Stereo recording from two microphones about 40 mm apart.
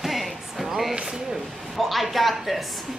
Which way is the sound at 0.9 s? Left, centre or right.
Centre.